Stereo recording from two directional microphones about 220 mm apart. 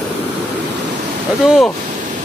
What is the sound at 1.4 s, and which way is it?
Speech, centre (ahead or behind).